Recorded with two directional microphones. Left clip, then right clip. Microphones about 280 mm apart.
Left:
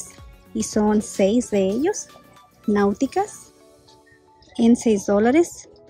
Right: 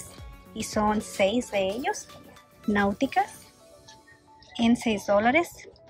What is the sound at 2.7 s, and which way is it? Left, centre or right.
Speech, centre.